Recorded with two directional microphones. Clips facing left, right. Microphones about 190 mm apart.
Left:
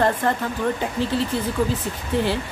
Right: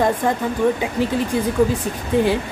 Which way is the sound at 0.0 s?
10° right (ahead or behind).